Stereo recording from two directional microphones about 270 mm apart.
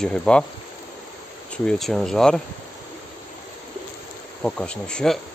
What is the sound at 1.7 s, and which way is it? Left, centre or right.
Speech, centre.